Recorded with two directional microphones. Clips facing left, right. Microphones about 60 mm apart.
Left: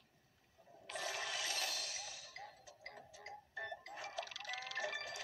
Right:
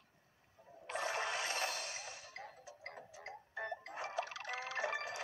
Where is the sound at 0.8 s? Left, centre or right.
Right.